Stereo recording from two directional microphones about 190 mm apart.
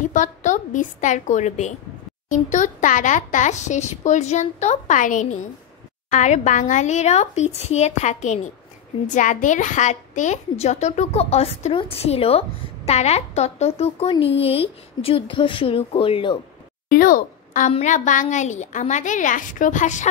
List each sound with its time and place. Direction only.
0.0 s a child's voice: 40° left (ahead or behind)
16.9 s a child's voice: 45° left (ahead or behind)